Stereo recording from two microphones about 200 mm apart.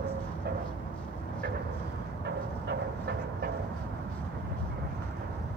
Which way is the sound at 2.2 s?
55° right (ahead or behind).